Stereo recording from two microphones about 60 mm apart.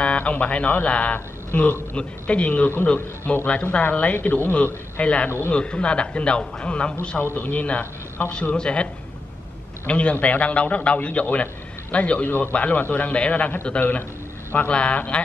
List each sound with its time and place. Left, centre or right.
0.0 s a man's voice: left
9.8 s speech: left